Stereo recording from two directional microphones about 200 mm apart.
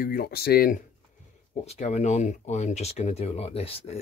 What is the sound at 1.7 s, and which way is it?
Speech, 35° left (ahead or behind).